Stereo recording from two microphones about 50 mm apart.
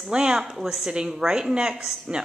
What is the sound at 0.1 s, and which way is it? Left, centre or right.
Speech, centre.